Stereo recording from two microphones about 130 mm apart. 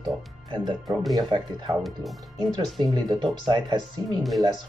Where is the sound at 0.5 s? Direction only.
35° right (ahead or behind).